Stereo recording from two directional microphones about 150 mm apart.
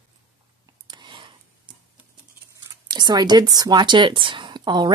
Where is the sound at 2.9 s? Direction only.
30° right (ahead or behind).